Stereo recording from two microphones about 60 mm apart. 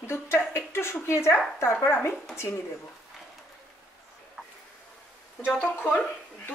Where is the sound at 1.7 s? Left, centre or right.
Left.